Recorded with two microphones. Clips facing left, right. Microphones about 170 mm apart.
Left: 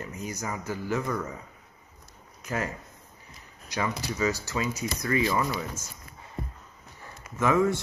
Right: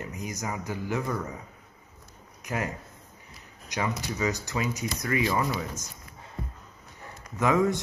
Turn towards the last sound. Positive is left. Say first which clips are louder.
# even
turn(degrees=-20)  # may be behind; listen again after turning